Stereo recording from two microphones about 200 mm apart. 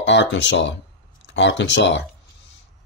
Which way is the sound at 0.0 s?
65° left (ahead or behind).